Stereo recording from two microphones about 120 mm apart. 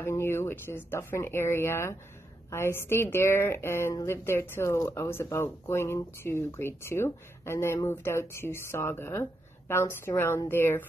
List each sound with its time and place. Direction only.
0.0 s speech: 20° left (ahead or behind)